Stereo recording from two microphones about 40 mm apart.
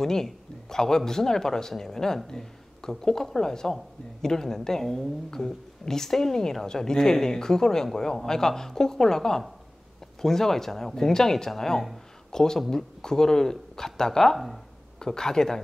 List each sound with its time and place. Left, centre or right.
0.0 s a woman's voice: centre
14.3 s speech: centre
15.0 s a woman's voice: centre